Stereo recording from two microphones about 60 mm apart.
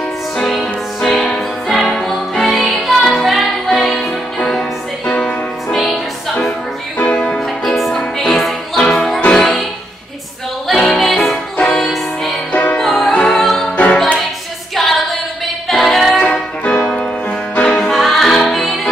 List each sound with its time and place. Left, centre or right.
0.4 s music: centre
7.0 s music: centre
10.7 s music: centre
11.5 s music: centre
11.9 s music: centre
12.5 s music: centre
12.8 s music: centre
14.8 s female singing: centre
15.7 s a capella: centre
16.2 s music: centre